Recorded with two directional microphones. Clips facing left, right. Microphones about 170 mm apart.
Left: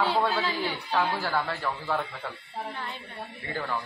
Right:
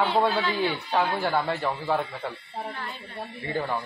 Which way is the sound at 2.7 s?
20° left (ahead or behind).